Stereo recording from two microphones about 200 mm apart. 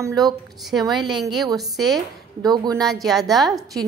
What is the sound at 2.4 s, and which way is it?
Speech, 20° right (ahead or behind).